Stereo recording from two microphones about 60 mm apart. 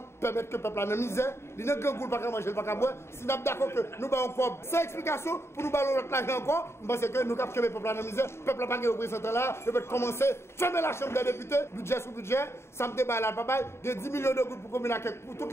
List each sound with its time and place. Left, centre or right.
0.2 s a man's voice: left